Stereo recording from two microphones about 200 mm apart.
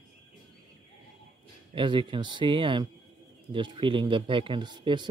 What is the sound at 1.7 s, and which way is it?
Speech, 25° right (ahead or behind).